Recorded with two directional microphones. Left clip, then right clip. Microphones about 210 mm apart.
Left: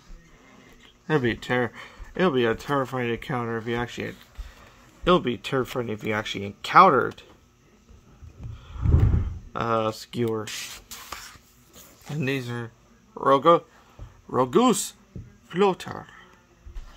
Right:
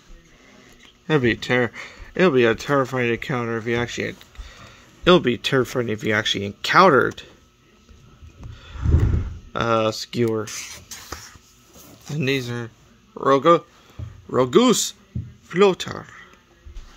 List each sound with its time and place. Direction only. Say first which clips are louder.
1.0 s speech: right 5 dB; 15° right (ahead or behind)
5.0 s speech: right 5 dB; 20° right (ahead or behind)
8.5 s a sound: right 3 dB; 25° right (ahead or behind)
9.5 s speech: right 5 dB; 15° right (ahead or behind)
12.1 s speech: right 5 dB; 10° right (ahead or behind)